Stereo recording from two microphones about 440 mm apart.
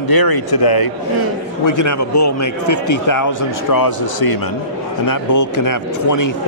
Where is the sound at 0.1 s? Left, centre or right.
Left.